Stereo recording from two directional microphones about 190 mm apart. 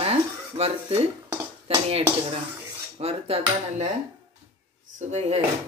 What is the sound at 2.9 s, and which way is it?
Cutlery, 30° right (ahead or behind).